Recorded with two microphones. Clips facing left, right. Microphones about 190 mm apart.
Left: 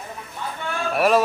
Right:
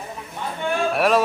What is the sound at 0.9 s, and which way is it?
Speech, centre (ahead or behind).